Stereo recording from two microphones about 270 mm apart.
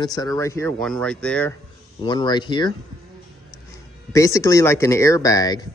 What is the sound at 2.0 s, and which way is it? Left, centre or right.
Speech, centre.